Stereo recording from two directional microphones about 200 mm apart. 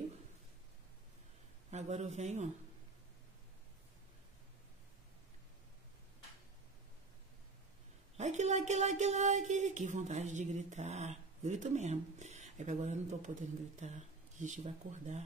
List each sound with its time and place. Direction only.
1.7 s speech: 35° right (ahead or behind)
8.2 s speech: 35° right (ahead or behind)